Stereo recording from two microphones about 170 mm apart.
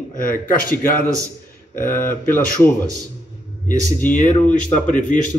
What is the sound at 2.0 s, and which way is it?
Speech, 10° left (ahead or behind).